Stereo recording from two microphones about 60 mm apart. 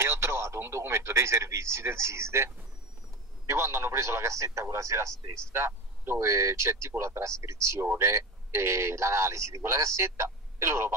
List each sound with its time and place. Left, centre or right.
0.0 s radio: right
3.4 s speech: right